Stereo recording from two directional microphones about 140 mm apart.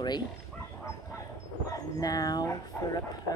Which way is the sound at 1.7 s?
25° left (ahead or behind).